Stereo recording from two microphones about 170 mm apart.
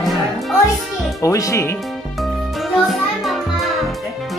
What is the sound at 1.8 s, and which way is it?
Music, centre (ahead or behind).